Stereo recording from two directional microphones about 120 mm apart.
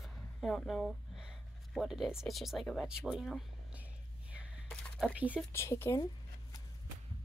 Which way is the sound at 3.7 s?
10° right (ahead or behind).